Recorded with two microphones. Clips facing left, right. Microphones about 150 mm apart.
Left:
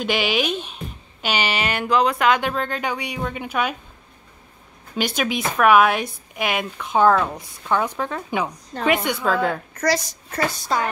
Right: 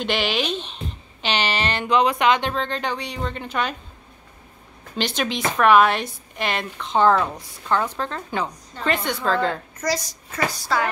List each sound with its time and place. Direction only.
0.0 s speech: 10° left (ahead or behind)
4.9 s speech: 10° left (ahead or behind)
9.8 s a woman's voice: 65° left (ahead or behind)
10.5 s a woman's voice: 20° left (ahead or behind)